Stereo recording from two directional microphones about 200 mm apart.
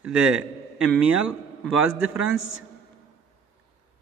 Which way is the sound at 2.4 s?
75° left (ahead or behind).